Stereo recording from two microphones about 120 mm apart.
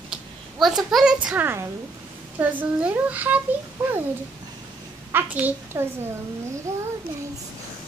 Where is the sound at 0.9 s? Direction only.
10° right (ahead or behind).